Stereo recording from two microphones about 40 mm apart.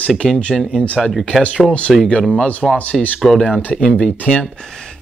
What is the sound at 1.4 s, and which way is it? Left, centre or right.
Speech, left.